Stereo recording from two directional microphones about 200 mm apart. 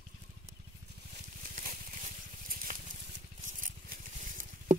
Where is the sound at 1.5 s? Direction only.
40° right (ahead or behind).